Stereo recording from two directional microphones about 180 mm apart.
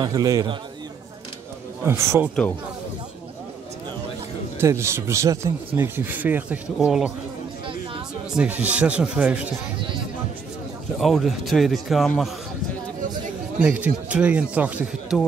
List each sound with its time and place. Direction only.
0.0 s a man's voice: 20° right (ahead or behind)
1.8 s speech: 15° right (ahead or behind)
4.6 s speech: 15° right (ahead or behind)
8.3 s speech: 5° right (ahead or behind)
11.0 s a man's voice: centre (ahead or behind)
13.6 s speech: 10° right (ahead or behind)